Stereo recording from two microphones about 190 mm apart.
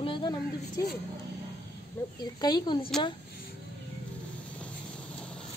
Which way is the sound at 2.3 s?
20° left (ahead or behind).